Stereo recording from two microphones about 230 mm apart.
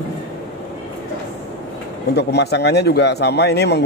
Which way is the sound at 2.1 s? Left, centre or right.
Left.